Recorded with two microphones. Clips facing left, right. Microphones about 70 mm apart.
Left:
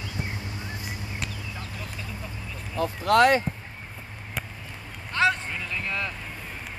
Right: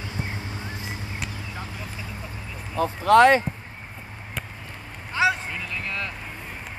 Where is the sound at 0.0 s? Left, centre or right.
Right.